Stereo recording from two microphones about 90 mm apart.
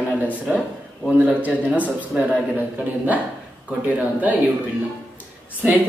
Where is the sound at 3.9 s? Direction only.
20° right (ahead or behind).